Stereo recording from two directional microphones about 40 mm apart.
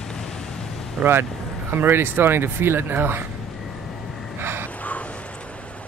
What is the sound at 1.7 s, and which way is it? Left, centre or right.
Speech, right.